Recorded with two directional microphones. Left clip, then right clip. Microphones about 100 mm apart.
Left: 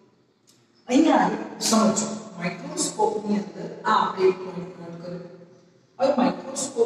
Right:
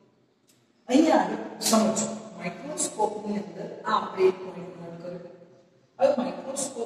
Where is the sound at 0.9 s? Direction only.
30° left (ahead or behind).